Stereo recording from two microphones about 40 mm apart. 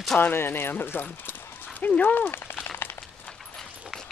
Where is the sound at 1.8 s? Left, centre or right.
Left.